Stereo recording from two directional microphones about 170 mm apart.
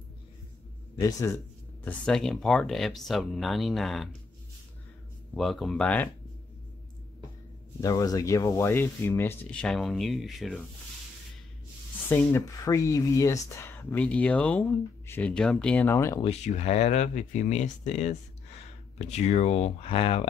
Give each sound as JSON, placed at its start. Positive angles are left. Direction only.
{"t": 1.0, "sound": "speech", "side_deg": 15}
{"t": 1.9, "sound": "speech", "side_deg": 5}
{"t": 5.3, "sound": "speech", "side_deg": 0}
{"t": 7.8, "sound": "speech", "side_deg": 20}
{"t": 12.1, "sound": "speech", "side_deg": 15}
{"t": 16.2, "sound": "speech", "side_deg": 40}